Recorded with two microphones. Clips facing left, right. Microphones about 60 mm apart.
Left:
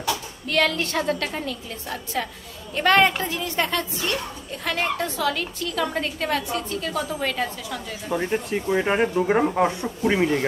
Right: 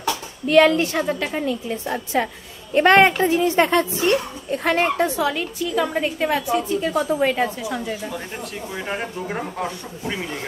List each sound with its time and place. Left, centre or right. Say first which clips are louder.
0.5 s a woman's voice: right 8 dB; right
0.8 s a woman's voice: right 2 dB; centre
8.1 s speech: left 7 dB; left